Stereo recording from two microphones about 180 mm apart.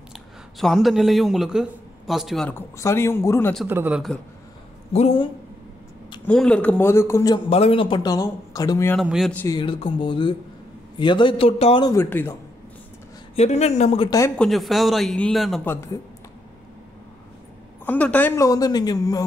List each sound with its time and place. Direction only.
0.6 s a man's voice: centre (ahead or behind)
2.5 s a man's voice: 15° left (ahead or behind)
3.6 s a man's voice: 10° right (ahead or behind)
4.9 s a man's voice: 30° left (ahead or behind)
6.2 s a man's voice: 5° left (ahead or behind)
7.4 s a man's voice: 30° left (ahead or behind)
9.0 s a man's voice: 5° right (ahead or behind)
9.3 s a man's voice: 10° left (ahead or behind)
9.6 s a man's voice: 25° left (ahead or behind)
11.9 s a man's voice: 10° left (ahead or behind)
13.4 s a man's voice: 35° left (ahead or behind)
14.4 s a man's voice: centre (ahead or behind)
15.6 s a man's voice: 15° left (ahead or behind)
17.8 s a man's voice: 10° left (ahead or behind)